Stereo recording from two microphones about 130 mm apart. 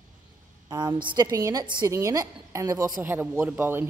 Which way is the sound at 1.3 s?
25° right (ahead or behind).